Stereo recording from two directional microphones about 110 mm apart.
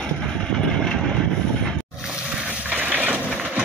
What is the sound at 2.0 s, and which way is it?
Boat, 10° right (ahead or behind).